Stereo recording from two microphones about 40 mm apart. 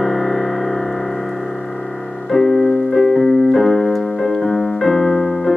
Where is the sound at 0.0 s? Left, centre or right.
Centre.